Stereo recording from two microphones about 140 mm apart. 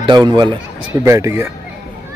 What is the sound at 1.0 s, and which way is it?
Speech, 20° right (ahead or behind).